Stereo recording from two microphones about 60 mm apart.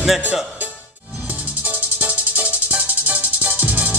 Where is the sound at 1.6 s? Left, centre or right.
Right.